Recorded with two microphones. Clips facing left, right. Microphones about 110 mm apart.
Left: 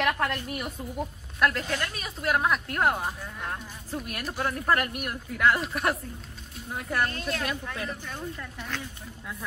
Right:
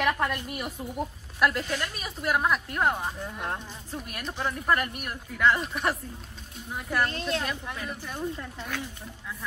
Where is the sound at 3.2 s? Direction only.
20° right (ahead or behind).